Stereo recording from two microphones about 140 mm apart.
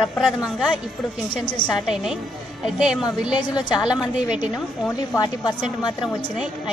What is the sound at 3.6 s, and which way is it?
Speech, 30° left (ahead or behind).